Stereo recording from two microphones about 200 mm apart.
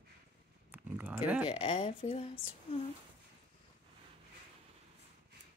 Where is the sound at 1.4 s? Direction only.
25° left (ahead or behind).